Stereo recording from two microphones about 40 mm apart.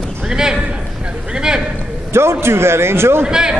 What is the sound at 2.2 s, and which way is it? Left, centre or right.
A man's voice, right.